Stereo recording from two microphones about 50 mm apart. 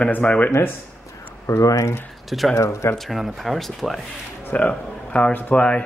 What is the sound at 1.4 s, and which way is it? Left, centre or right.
Speech, left.